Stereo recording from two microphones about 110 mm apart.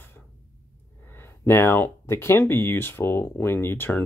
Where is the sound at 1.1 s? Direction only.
20° left (ahead or behind).